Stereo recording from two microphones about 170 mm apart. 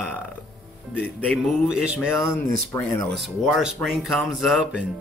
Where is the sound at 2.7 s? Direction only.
20° left (ahead or behind).